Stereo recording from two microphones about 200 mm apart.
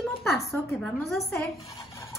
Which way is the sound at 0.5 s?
Centre (ahead or behind).